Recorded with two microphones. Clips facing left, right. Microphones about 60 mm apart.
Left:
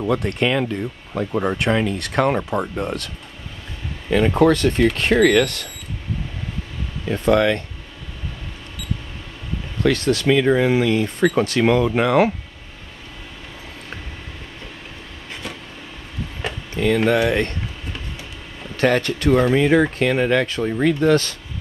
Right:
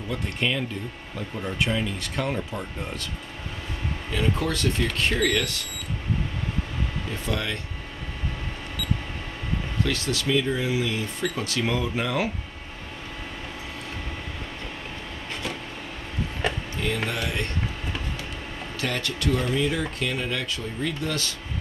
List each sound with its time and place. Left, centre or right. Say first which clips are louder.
0.0 s speech: left 8 dB; left
4.1 s speech: left 11 dB; left
7.1 s speech: left 15 dB; left
9.8 s speech: left 12 dB; left
10.2 s speech: left 8 dB; left
16.8 s speech: left 12 dB; left
18.8 s speech: left 11 dB; left